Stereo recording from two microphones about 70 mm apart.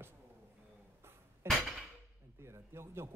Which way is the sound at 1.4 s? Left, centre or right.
Right.